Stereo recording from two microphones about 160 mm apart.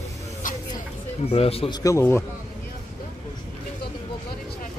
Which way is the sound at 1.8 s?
20° left (ahead or behind).